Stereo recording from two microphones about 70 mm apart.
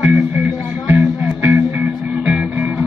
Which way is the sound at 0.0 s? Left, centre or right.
Right.